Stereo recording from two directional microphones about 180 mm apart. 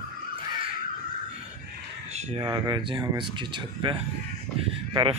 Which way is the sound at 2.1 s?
35° right (ahead or behind).